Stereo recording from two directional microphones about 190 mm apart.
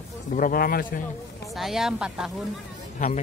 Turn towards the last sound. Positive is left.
turn(degrees=40)  # may be behind; listen again after turning